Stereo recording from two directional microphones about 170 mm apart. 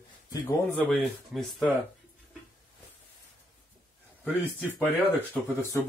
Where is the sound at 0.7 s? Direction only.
Centre (ahead or behind).